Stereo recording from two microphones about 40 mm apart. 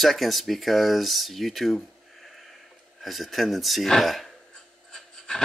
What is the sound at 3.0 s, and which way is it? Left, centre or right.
Speech, centre.